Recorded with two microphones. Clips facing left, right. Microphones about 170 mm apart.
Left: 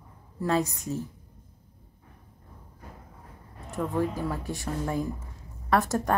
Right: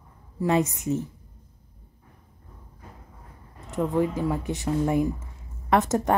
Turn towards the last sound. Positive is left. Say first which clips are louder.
# right 3 dB
turn(degrees=-20)  # may be behind; listen again after turning